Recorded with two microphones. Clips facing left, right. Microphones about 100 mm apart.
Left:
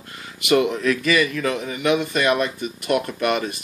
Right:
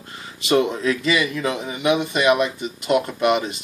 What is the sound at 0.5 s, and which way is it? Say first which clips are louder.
Speech: even; 25° right (ahead or behind).